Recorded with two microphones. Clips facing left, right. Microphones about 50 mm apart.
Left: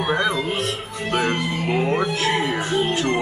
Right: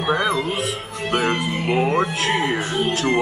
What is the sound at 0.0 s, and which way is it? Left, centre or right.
Speech, centre.